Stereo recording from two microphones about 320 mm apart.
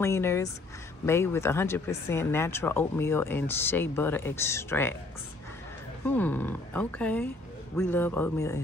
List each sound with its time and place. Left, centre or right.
0.0 s speech: centre
6.0 s speech: centre